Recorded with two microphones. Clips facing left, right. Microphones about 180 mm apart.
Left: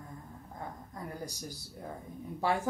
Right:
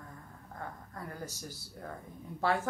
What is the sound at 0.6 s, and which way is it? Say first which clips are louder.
A woman's voice: left 1 dB; 15° left (ahead or behind).